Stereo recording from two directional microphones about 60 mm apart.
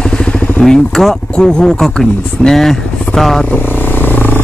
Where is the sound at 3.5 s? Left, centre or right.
Left.